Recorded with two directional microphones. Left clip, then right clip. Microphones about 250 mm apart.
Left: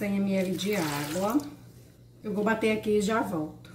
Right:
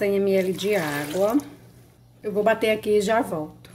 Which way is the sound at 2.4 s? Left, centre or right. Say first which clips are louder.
Right 6 dB; right.